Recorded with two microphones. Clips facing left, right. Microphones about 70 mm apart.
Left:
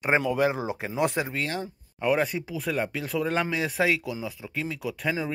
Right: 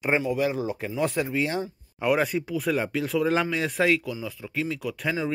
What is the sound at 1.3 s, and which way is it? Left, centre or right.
Speech, centre.